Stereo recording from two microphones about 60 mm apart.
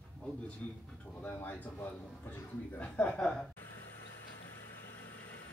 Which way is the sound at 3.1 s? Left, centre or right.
Centre.